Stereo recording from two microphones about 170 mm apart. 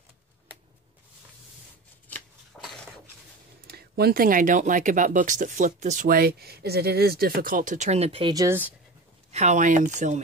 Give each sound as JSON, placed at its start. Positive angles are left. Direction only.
{"t": 2.6, "sound": "a sound", "side_deg": 0}
{"t": 3.6, "sound": "speech", "side_deg": -65}
{"t": 9.3, "sound": "speech", "side_deg": -45}